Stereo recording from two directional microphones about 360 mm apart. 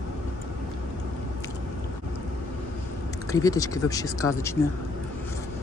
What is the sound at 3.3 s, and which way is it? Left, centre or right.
Speech, centre.